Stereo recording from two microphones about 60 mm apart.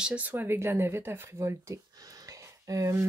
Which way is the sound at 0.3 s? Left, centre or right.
Right.